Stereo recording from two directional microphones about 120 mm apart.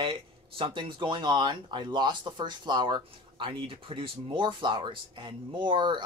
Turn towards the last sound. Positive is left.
turn(degrees=-40)  # may be behind; listen again after turning